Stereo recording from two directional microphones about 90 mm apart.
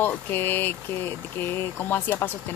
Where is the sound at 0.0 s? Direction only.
25° left (ahead or behind).